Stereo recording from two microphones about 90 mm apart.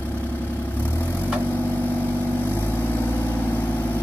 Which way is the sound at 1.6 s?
20° left (ahead or behind).